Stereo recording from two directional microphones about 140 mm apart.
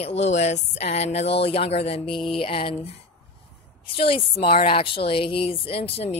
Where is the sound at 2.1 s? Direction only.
Centre (ahead or behind).